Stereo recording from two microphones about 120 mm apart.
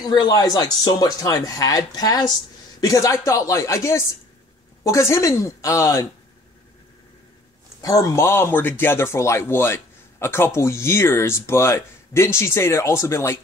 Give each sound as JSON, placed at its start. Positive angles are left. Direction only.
{"t": 0.0, "sound": "speech", "side_deg": 35}
{"t": 7.8, "sound": "speech", "side_deg": 30}